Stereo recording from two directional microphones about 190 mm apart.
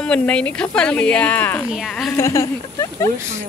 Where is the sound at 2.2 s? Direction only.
15° left (ahead or behind).